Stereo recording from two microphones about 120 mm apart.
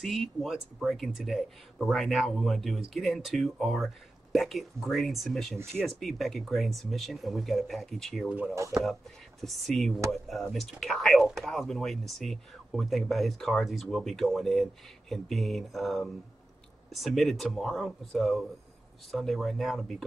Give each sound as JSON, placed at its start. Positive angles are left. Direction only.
{"t": 0.0, "sound": "speech", "side_deg": 0}
{"t": 8.5, "sound": "speech", "side_deg": -25}
{"t": 9.4, "sound": "speech", "side_deg": 0}